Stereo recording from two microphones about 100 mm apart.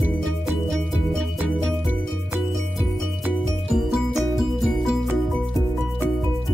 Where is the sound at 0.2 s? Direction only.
Centre (ahead or behind).